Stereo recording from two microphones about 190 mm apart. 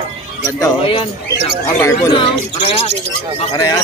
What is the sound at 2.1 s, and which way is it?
Speech, 25° left (ahead or behind).